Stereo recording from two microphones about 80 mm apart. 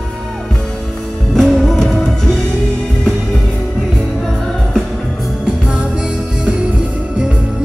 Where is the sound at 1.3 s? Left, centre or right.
Centre.